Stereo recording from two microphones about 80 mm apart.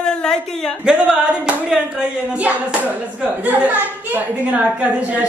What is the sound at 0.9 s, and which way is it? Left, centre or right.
Speech, centre.